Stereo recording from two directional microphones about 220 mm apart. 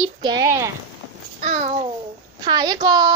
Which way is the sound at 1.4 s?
35° right (ahead or behind).